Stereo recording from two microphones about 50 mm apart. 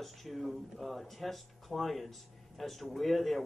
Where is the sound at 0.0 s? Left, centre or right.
Centre.